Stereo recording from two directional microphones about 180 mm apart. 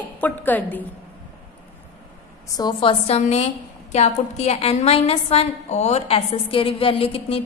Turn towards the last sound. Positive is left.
turn(degrees=30)  # may be behind; listen again after turning